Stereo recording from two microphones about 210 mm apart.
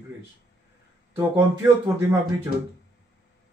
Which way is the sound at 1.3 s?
10° right (ahead or behind).